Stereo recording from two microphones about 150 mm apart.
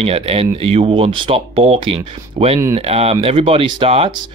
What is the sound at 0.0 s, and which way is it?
Speech, 40° right (ahead or behind).